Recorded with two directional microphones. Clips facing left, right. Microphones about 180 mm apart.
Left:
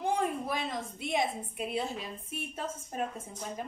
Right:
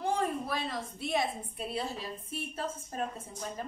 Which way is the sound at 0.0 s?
15° left (ahead or behind).